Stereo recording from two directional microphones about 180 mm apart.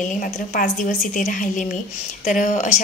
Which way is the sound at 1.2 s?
45° left (ahead or behind).